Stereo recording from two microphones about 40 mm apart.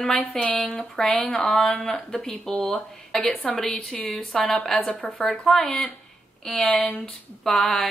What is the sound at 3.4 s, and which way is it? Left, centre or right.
Speech, left.